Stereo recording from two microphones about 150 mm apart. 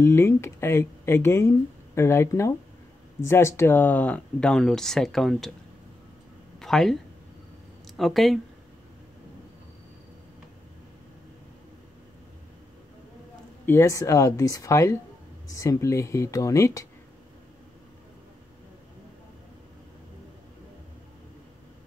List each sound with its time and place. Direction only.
0.0 s speech: 20° left (ahead or behind); by 5.5 s centre (ahead or behind)
6.6 s speech: centre (ahead or behind)
8.0 s speech: centre (ahead or behind)
13.7 s speech: 20° left (ahead or behind)